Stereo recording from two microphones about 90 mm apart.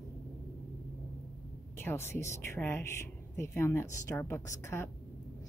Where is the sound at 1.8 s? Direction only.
25° left (ahead or behind).